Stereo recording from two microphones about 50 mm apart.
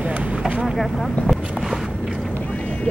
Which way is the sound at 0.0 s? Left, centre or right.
Right.